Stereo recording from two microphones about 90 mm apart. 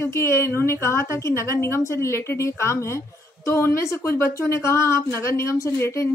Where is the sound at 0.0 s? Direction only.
30° left (ahead or behind).